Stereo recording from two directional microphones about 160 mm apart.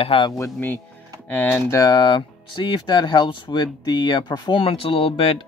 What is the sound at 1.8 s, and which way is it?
Speech, 25° left (ahead or behind).